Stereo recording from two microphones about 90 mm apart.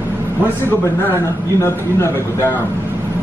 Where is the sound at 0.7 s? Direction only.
25° left (ahead or behind).